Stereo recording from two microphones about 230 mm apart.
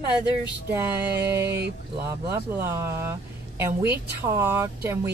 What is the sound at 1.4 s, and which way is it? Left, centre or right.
Speech, right.